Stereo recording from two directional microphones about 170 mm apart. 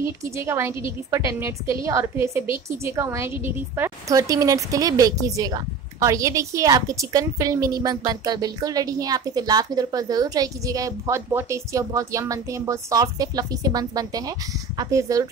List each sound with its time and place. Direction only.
0.0 s a woman's voice: 15° right (ahead or behind)